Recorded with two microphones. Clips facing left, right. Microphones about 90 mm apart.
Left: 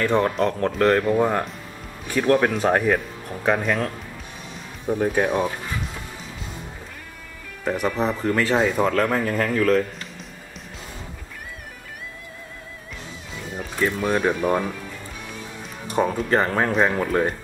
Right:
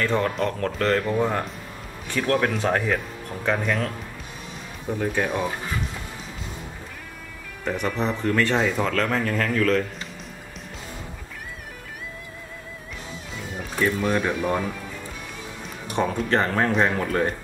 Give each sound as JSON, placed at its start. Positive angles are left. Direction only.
{"t": 0.0, "sound": "speech", "side_deg": 15}
{"t": 7.6, "sound": "speech", "side_deg": 5}
{"t": 13.6, "sound": "music", "side_deg": 0}
{"t": 14.1, "sound": "speech", "side_deg": 10}
{"t": 15.6, "sound": "speech", "side_deg": 5}